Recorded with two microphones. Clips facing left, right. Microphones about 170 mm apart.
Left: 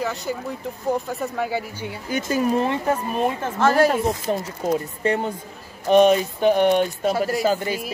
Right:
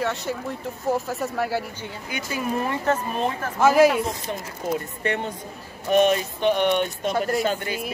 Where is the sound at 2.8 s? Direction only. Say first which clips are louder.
Left 1 dB; 10° left (ahead or behind).